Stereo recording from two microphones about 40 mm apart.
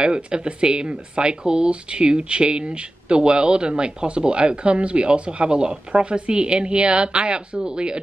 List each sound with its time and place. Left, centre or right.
0.0 s speech: right